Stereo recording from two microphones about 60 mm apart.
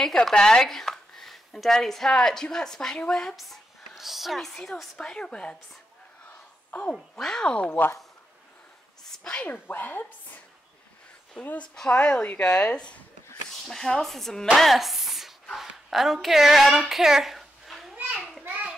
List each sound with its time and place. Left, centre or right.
0.0 s speech: centre
3.3 s speech: centre
6.9 s speech: centre
9.3 s a woman's voice: left
9.7 s a woman's voice: left
11.7 s speech: centre
14.6 s a sound: centre
15.5 s a woman's voice: centre
18.1 s children playing: centre